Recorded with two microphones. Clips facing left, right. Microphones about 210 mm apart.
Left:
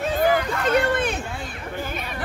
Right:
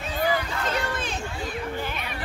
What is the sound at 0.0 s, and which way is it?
Hubbub, 55° left (ahead or behind).